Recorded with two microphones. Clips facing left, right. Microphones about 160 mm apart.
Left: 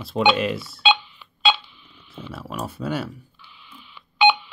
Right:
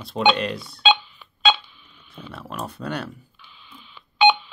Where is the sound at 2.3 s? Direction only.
Centre (ahead or behind).